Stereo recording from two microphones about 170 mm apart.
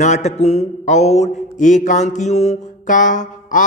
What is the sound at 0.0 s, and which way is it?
A man's voice, 45° left (ahead or behind).